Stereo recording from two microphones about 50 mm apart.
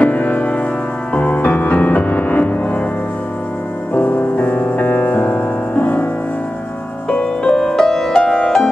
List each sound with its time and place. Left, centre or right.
0.0 s music: left
3.9 s music: left
7.1 s music: left
7.5 s music: centre